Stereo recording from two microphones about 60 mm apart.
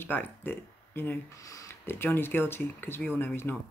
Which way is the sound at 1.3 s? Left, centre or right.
Left.